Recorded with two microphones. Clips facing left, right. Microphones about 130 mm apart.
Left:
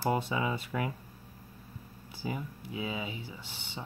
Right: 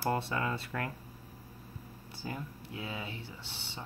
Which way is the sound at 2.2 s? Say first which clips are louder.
Left 4 dB; 10° left (ahead or behind).